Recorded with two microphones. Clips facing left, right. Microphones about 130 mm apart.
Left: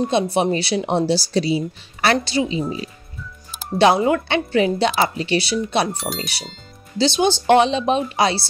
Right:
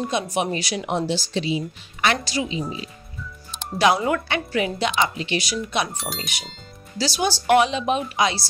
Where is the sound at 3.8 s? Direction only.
25° left (ahead or behind).